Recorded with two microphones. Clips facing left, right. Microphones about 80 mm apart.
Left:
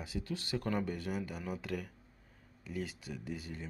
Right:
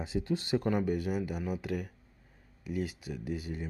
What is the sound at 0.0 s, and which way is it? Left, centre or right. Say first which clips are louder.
Speech: right 7 dB; right.